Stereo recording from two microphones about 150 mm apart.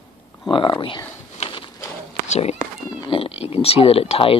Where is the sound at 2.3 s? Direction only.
45° left (ahead or behind).